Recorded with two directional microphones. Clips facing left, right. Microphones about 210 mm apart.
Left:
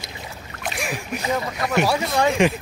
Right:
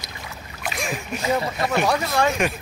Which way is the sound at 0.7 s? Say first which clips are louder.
Even; 5° left (ahead or behind).